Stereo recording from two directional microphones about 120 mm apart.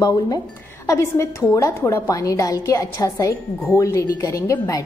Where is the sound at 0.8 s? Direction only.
20° left (ahead or behind).